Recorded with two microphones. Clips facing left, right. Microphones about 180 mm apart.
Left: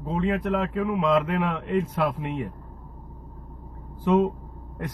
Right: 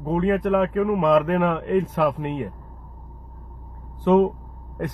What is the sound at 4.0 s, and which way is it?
Speech, 60° right (ahead or behind).